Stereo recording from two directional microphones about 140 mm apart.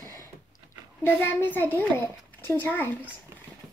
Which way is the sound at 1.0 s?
15° left (ahead or behind).